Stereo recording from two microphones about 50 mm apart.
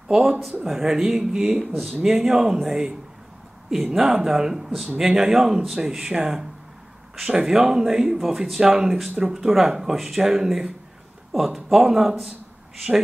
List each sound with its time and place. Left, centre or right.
0.1 s speech: centre